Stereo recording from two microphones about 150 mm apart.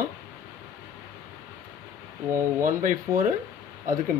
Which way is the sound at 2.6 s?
60° right (ahead or behind).